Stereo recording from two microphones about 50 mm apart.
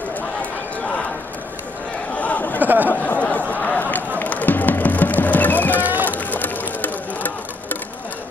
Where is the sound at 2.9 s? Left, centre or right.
Left.